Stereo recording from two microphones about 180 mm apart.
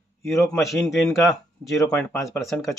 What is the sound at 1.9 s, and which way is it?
Speech, 15° left (ahead or behind).